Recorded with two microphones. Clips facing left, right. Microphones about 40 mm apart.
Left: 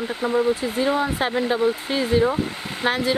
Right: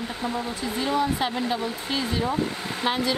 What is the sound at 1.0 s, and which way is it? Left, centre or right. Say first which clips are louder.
Speech: left 2 dB; left.